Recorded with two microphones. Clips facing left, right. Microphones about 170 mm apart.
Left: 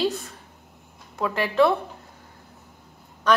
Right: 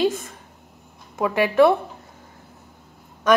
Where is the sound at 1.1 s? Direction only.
10° right (ahead or behind).